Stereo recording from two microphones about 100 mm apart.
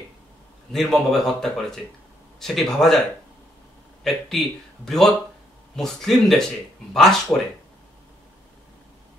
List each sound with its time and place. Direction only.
0.7 s speech: 5° left (ahead or behind)
4.0 s speech: centre (ahead or behind)